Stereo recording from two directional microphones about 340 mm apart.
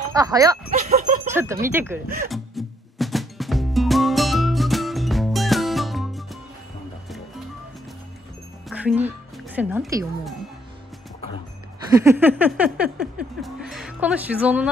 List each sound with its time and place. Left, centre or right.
0.1 s speech: centre
0.7 s speech: right
1.2 s speech: centre
2.2 s music: centre
8.6 s speech: centre
11.9 s a sound: centre